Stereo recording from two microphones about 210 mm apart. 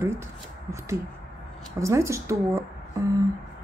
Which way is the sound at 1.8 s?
15° right (ahead or behind).